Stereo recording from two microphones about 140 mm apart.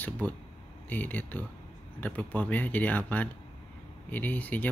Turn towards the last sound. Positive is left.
turn(degrees=10)  # may be behind; listen again after turning